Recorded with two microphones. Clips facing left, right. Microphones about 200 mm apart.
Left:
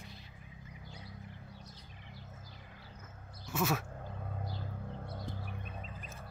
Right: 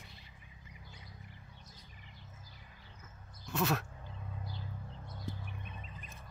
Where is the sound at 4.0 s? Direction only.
55° left (ahead or behind).